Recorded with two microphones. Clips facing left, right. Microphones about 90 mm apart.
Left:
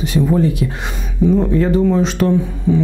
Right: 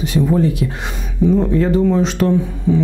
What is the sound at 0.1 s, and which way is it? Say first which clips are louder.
Speech: even; 15° left (ahead or behind).